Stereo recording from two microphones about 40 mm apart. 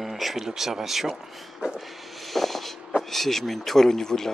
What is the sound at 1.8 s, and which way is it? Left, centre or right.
Vehicle, centre.